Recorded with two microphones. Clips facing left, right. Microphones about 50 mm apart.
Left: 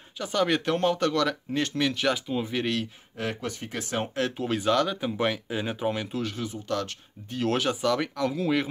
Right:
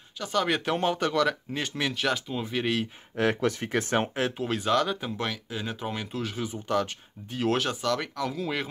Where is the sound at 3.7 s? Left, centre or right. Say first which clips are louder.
Right 4 dB; right.